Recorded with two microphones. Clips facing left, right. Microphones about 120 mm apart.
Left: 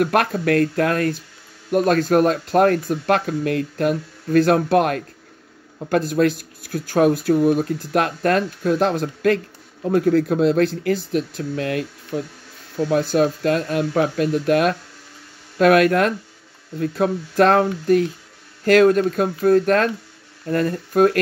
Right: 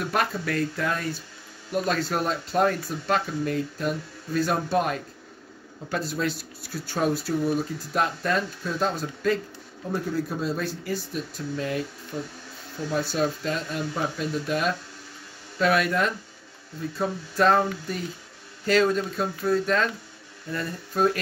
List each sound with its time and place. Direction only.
0.0 s speech: 65° left (ahead or behind)
1.7 s speech: 55° left (ahead or behind); by 5.0 s 70° left (ahead or behind)
5.9 s speech: 60° left (ahead or behind)
12.1 s speech: 85° left
12.9 s speech: 60° left (ahead or behind)